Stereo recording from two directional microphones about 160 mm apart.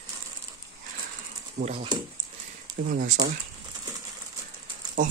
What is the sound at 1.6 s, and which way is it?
Speech, 55° right (ahead or behind).